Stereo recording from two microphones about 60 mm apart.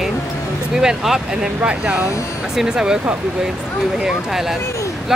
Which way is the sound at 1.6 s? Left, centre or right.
Right.